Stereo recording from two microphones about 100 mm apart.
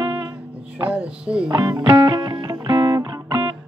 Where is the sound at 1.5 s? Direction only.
50° right (ahead or behind).